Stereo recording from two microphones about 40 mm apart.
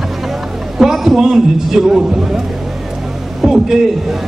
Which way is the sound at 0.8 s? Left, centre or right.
Centre.